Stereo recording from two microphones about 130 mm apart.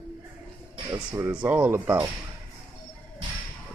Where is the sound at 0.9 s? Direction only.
20° right (ahead or behind).